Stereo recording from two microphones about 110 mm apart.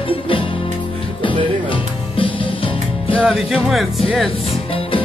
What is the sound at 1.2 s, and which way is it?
Music, 50° left (ahead or behind).